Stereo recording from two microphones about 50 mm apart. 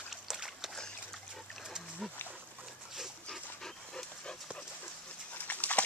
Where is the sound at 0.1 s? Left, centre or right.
Centre.